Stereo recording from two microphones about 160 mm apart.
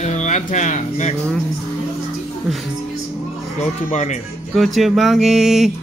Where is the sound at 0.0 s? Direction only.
45° left (ahead or behind).